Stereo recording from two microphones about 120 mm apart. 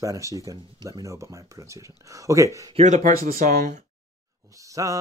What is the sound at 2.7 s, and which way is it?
Speech, 85° right.